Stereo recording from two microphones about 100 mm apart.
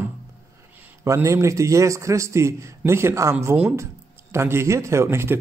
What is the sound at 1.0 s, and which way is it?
A man's voice, 30° right (ahead or behind).